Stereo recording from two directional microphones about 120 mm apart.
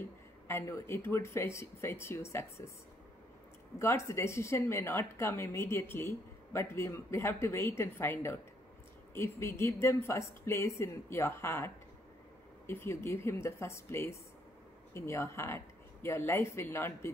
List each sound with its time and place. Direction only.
0.0 s speech: 20° left (ahead or behind)
3.8 s a woman's voice: 20° left (ahead or behind)